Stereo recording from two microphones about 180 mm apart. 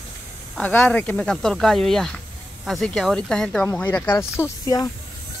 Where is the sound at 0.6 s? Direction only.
10° left (ahead or behind).